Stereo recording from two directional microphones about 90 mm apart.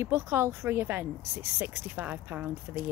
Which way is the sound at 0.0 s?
30° right (ahead or behind).